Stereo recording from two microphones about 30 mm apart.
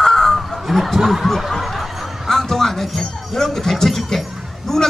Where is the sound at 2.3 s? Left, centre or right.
Centre.